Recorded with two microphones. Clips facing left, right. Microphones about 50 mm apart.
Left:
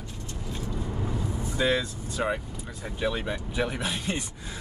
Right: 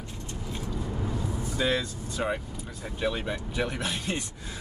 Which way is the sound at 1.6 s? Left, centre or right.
Centre.